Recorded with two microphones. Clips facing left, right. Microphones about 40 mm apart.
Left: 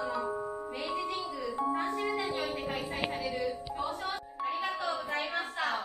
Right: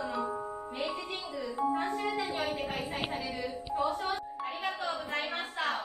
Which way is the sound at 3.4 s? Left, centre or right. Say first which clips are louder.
Left 1 dB; centre.